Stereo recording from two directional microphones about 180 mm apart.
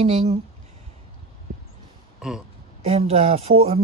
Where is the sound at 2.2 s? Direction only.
5° right (ahead or behind).